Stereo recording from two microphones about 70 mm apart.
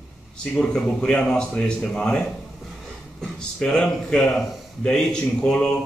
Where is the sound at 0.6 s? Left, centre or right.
Centre.